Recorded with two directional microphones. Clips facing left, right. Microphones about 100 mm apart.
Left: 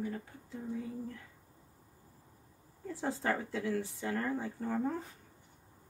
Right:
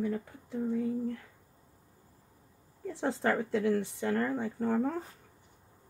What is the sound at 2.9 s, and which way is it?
Speech, 65° right (ahead or behind).